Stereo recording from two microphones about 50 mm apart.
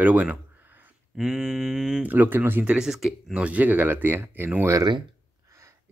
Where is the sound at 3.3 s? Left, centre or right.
Right.